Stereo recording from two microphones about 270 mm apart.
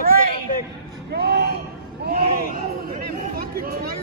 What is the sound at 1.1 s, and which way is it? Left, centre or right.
Speech, right.